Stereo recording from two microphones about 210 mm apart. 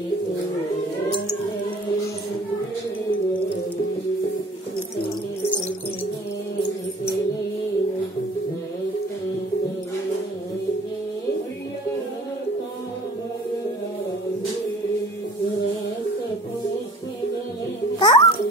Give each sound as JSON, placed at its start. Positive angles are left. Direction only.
{"t": 17.9, "sound": "babbling", "side_deg": 20}